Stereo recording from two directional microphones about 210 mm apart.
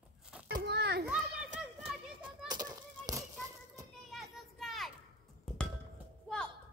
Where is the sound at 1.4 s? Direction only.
35° right (ahead or behind).